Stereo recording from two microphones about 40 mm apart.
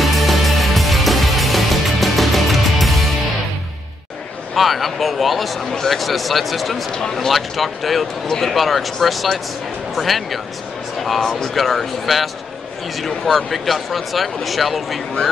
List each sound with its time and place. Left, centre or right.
0.0 s music: centre
4.6 s speech: centre
7.0 s speech: centre
7.2 s speech: centre
11.4 s speech: centre